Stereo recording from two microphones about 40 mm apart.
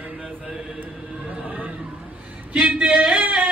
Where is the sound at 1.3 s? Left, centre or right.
Right.